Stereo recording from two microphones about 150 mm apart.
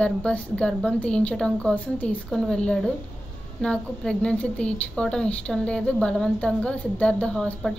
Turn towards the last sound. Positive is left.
turn(degrees=5)  # may be behind; listen again after turning